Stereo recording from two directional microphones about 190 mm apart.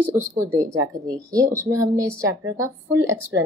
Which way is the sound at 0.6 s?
20° right (ahead or behind).